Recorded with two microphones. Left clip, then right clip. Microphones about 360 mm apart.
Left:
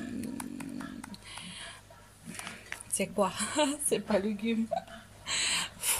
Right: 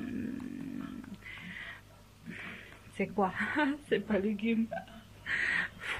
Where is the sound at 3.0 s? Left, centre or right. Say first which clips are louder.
Left 1 dB; centre.